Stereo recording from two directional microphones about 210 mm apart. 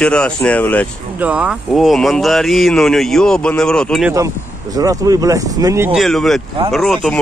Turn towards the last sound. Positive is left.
turn(degrees=0)  # may be behind; listen again after turning